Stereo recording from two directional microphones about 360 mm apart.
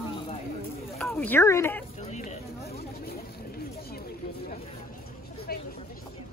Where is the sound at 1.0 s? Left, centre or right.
Centre.